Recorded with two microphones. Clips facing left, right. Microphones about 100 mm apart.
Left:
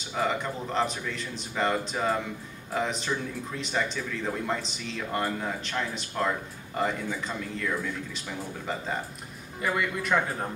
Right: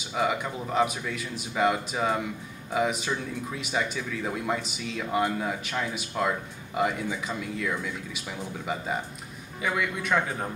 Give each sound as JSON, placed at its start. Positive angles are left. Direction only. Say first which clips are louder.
{"t": 0.1, "sound": "a man's voice", "louder": "right 1 dB", "side_deg": -5}